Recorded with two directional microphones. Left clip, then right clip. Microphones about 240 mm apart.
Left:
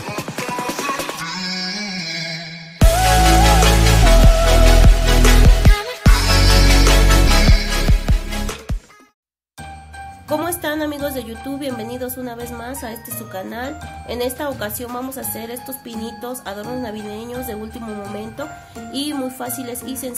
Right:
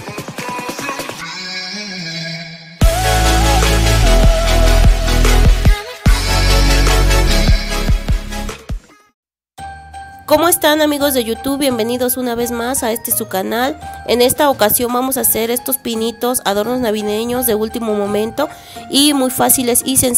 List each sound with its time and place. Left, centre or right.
0.1 s music: centre
10.2 s a woman's voice: right